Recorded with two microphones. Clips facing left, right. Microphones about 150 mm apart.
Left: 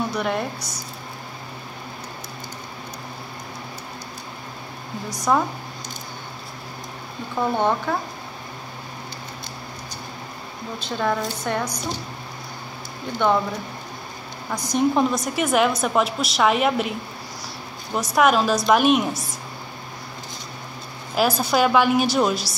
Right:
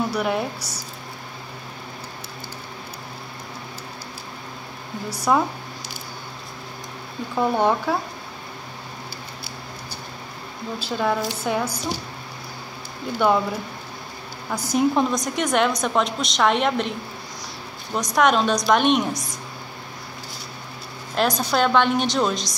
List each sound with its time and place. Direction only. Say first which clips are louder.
0.1 s a woman's voice: right 1 dB; 5° right (ahead or behind)
5.3 s a woman's voice: right 1 dB; 5° right (ahead or behind)
7.3 s speech: right 1 dB; 10° right (ahead or behind)
10.8 s a woman's voice: right 1 dB; 5° right (ahead or behind)
13.2 s a woman's voice: right 1 dB; 5° right (ahead or behind)
17.9 s a woman's voice: left 1 dB; 5° left (ahead or behind)
21.1 s a woman's voice: left 1 dB; 5° left (ahead or behind)